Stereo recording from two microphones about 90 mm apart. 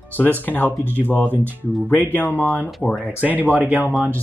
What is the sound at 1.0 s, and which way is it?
Speech, 20° left (ahead or behind).